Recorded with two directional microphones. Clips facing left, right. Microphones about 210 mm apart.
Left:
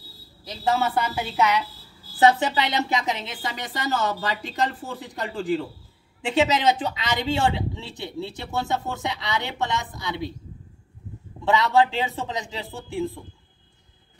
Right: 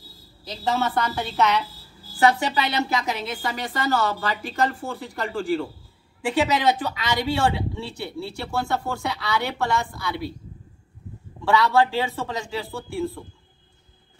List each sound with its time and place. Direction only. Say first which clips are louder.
0.7 s a woman's voice: left 1 dB; 5° left (ahead or behind)
2.1 s speech: left 1 dB; 20° left (ahead or behind)
11.4 s speech: even; 20° left (ahead or behind)